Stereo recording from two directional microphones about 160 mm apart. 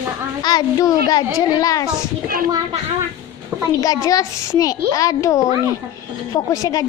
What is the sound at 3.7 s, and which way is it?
Speech, 20° left (ahead or behind).